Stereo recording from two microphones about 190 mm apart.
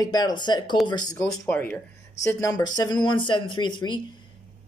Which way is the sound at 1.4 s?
10° left (ahead or behind).